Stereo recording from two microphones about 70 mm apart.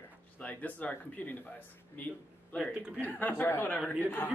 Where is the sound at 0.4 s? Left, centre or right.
Left.